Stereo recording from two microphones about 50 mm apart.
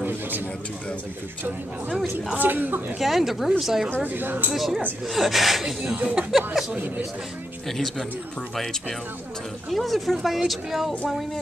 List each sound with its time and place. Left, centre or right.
2.3 s speech: right
3.0 s speech: centre
4.0 s speech: right
4.6 s speech: centre
7.6 s speech: centre
9.7 s speech: centre